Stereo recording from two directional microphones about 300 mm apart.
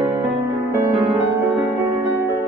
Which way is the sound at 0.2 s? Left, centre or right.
Right.